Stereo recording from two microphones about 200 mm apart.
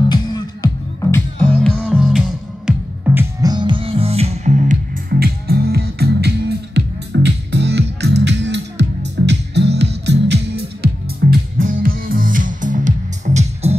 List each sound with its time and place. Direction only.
0.1 s music: 20° left (ahead or behind)
1.1 s music: 5° left (ahead or behind); by 13.7 s 35° right (ahead or behind)